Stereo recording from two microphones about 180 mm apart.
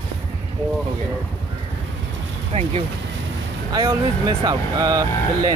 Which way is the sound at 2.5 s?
30° right (ahead or behind).